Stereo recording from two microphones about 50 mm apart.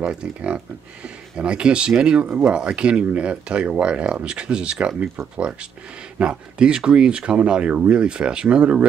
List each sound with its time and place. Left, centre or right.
0.0 s speech: right
6.1 s speech: centre